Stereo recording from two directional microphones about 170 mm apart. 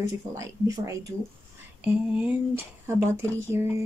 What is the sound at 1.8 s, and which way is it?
Speech, 10° right (ahead or behind).